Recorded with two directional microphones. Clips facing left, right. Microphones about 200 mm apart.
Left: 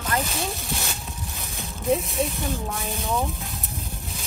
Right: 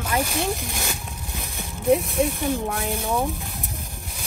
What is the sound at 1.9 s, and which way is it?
Speech, centre (ahead or behind).